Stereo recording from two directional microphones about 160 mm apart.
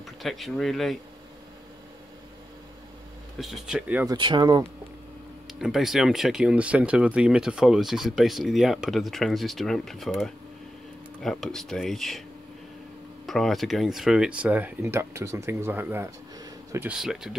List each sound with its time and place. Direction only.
0.0 s speech: centre (ahead or behind)
3.3 s speech: centre (ahead or behind)
4.1 s speech: 30° right (ahead or behind)
5.5 s speech: centre (ahead or behind)
13.3 s speech: centre (ahead or behind); by 16.9 s 15° right (ahead or behind)
16.9 s speech: 5° right (ahead or behind)